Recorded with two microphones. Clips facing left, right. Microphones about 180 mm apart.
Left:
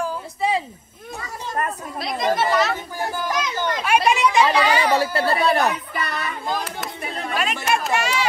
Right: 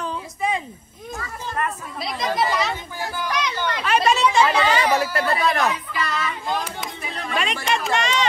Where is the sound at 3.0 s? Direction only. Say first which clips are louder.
Left 3 dB; 50° left (ahead or behind).